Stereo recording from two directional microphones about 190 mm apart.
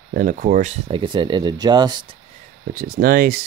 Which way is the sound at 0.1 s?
45° right (ahead or behind).